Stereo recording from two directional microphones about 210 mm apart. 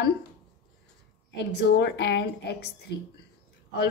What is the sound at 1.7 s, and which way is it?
A woman's voice, 55° left (ahead or behind).